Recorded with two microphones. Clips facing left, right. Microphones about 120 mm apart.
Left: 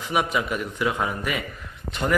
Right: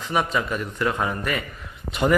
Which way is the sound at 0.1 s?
10° left (ahead or behind).